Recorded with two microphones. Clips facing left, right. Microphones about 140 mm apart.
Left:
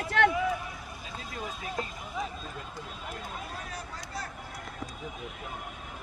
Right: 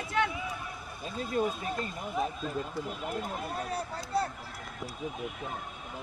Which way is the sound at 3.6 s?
30° right (ahead or behind).